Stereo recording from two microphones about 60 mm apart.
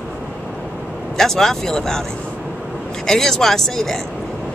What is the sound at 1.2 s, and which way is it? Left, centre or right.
Speech, centre.